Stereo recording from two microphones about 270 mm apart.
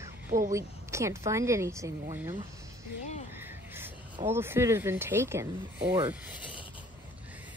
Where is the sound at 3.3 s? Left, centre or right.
Centre.